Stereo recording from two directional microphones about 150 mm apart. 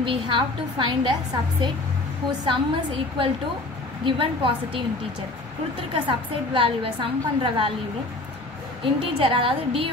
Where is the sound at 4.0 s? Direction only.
35° right (ahead or behind).